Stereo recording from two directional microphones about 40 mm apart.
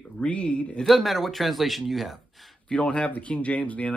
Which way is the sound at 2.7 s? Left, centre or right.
Left.